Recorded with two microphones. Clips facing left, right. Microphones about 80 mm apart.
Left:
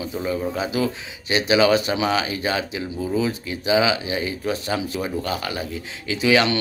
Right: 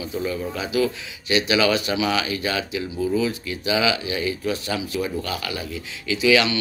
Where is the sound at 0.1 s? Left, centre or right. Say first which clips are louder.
Left 1 dB; left.